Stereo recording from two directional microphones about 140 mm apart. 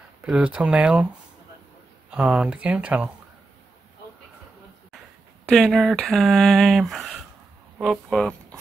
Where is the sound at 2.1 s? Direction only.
5° right (ahead or behind).